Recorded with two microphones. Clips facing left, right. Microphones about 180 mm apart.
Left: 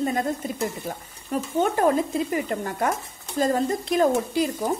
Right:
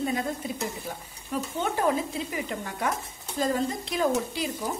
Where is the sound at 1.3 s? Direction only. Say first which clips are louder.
Left 6 dB; 45° left (ahead or behind).